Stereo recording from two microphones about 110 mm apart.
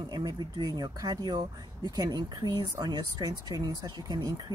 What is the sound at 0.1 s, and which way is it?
Speech, 35° right (ahead or behind).